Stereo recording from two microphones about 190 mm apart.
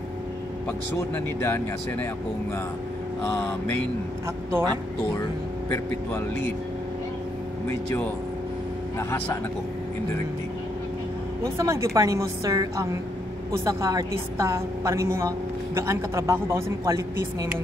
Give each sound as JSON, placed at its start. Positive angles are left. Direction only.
{"t": 0.7, "sound": "speech", "side_deg": 15}
{"t": 4.5, "sound": "a woman's voice", "side_deg": -15}
{"t": 5.7, "sound": "speech", "side_deg": 10}
{"t": 11.4, "sound": "a woman's voice", "side_deg": -15}